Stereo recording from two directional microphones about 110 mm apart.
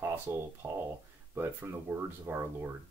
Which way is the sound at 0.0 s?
20° right (ahead or behind).